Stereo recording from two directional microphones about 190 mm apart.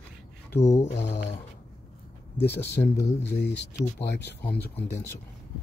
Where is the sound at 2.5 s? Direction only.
60° left (ahead or behind).